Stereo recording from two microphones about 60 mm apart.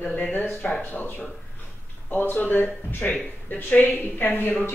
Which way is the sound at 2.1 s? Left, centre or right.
Left.